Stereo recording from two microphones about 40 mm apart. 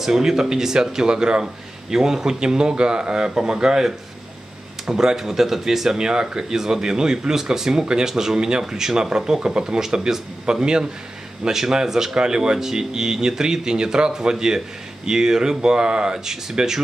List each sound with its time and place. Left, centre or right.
0.0 s speech: centre